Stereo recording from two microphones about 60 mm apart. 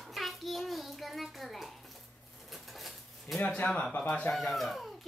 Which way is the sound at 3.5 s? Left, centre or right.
Centre.